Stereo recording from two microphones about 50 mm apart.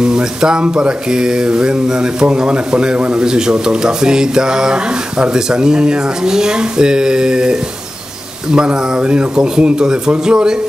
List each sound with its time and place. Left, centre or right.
0.0 s speech: centre